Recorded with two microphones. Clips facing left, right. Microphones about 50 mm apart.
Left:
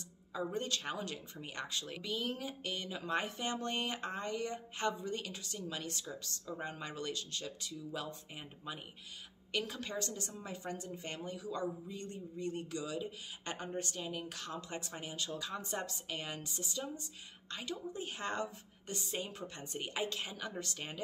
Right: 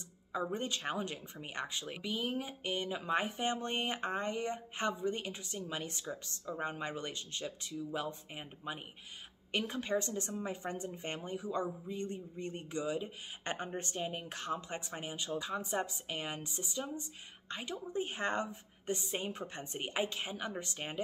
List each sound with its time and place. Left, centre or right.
0.3 s a woman's voice: right